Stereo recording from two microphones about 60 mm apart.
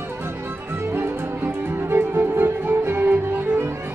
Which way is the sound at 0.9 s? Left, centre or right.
Right.